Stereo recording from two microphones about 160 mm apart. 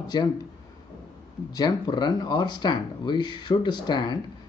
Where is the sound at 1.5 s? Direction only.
25° left (ahead or behind).